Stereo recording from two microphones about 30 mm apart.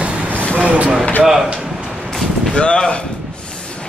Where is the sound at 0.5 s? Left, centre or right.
Right.